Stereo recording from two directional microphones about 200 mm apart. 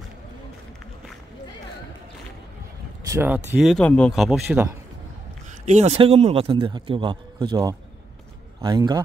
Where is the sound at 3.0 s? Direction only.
15° right (ahead or behind).